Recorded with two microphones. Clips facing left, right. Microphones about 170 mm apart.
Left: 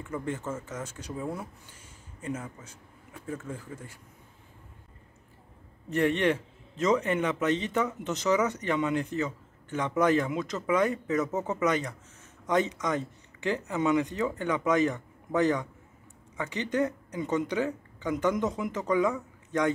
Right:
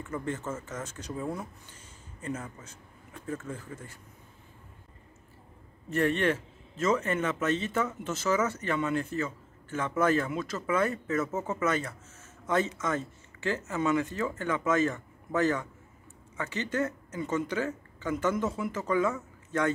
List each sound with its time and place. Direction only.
0.0 s a man's voice: 10° left (ahead or behind)
5.9 s a man's voice: 15° left (ahead or behind)